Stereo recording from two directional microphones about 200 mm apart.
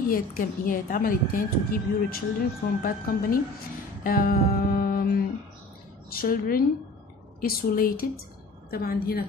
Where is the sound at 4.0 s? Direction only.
45° left (ahead or behind).